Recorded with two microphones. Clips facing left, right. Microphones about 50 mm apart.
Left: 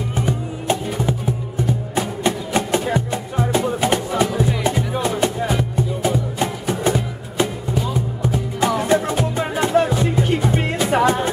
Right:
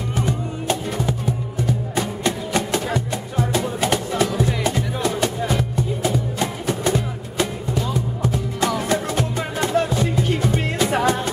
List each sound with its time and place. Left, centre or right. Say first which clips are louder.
0.2 s music: even; centre
7.7 s music: left 1 dB; centre